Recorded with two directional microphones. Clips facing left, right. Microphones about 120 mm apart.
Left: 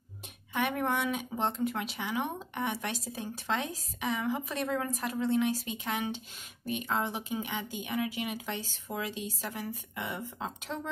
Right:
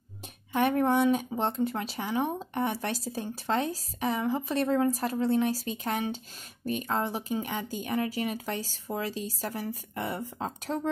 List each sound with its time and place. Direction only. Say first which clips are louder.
0.5 s speech: right 6 dB; 35° right (ahead or behind)